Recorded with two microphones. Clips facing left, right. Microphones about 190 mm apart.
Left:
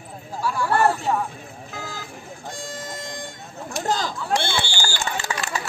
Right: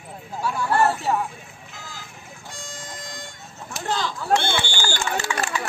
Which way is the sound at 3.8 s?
40° left (ahead or behind).